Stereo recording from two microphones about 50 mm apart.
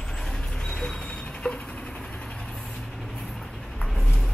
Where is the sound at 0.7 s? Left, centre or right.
Centre.